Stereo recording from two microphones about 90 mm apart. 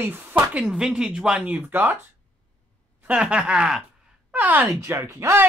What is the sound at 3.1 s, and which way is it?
Speech, 15° right (ahead or behind).